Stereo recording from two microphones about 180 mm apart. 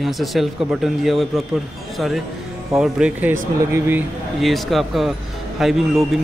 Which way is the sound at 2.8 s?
5° right (ahead or behind).